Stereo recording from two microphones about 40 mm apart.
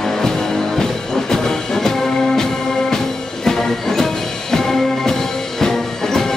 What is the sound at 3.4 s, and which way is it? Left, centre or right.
Music, centre.